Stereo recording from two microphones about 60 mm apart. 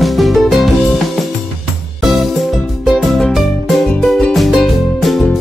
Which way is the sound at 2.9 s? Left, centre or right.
Centre.